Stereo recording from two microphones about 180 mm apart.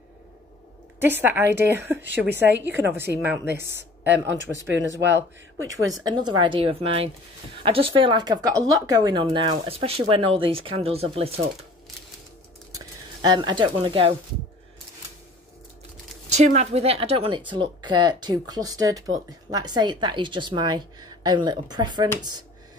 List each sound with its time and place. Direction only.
1.0 s a woman's voice: 10° right (ahead or behind)
3.6 s speech: 75° right (ahead or behind)
5.9 s speech: 20° right (ahead or behind)
12.7 s speech: 25° right (ahead or behind)
16.3 s speech: 40° right (ahead or behind)